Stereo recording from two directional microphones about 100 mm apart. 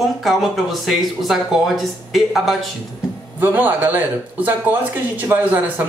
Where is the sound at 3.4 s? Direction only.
20° right (ahead or behind).